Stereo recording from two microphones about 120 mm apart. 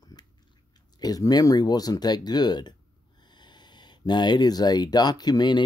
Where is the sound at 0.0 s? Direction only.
35° left (ahead or behind).